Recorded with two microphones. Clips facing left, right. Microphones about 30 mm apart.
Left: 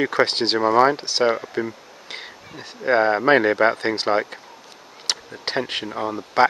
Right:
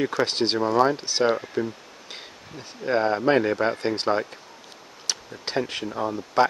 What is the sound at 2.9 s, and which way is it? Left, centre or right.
Speech, left.